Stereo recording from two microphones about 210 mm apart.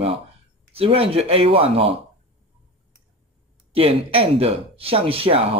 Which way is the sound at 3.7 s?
25° right (ahead or behind).